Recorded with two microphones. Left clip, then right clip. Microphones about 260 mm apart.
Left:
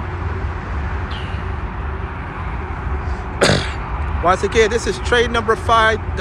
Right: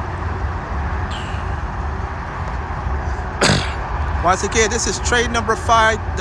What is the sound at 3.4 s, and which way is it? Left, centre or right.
Throat clearing, centre.